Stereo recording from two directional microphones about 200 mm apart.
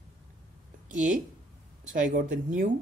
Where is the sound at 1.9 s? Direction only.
40° right (ahead or behind).